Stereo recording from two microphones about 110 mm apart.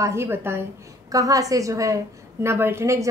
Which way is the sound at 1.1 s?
30° right (ahead or behind).